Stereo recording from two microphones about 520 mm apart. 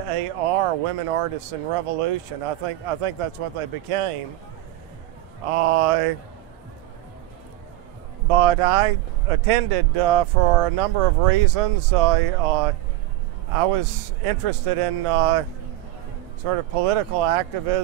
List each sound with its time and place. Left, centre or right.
0.1 s speech: right
5.5 s speech: right
8.3 s speech: right
16.4 s speech: right